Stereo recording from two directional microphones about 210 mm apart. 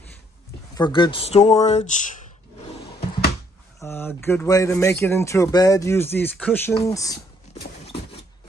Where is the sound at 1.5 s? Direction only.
35° left (ahead or behind).